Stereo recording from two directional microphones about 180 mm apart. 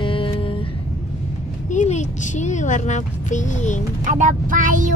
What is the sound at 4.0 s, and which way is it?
Speech, 45° right (ahead or behind).